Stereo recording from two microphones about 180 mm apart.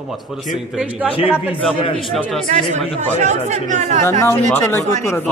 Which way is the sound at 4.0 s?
15° left (ahead or behind).